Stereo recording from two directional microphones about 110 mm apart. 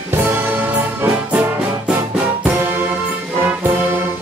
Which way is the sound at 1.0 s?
20° right (ahead or behind).